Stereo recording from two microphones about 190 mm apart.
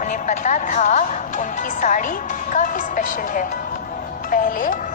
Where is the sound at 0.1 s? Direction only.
40° left (ahead or behind).